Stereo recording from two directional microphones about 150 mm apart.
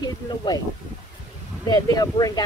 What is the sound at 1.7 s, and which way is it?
Speech, 25° left (ahead or behind).